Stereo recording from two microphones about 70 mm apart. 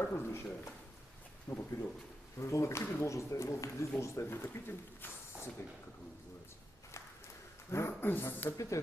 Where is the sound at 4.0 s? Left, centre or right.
Left.